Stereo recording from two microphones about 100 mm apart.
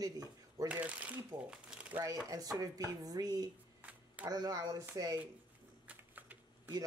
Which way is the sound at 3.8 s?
15° right (ahead or behind).